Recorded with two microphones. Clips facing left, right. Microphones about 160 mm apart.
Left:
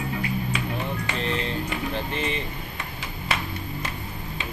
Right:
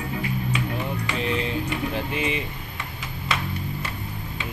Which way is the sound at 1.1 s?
10° right (ahead or behind).